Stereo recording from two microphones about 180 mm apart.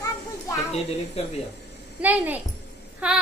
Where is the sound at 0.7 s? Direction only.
35° left (ahead or behind).